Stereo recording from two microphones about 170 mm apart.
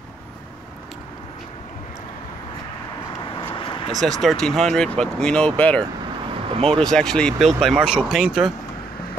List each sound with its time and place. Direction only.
3.5 s vehicle: 30° left (ahead or behind)
3.9 s speech: centre (ahead or behind)
6.5 s speech: 35° right (ahead or behind)
6.8 s speech: 5° left (ahead or behind)